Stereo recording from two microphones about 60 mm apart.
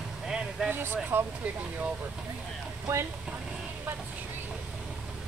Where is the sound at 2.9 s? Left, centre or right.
Right.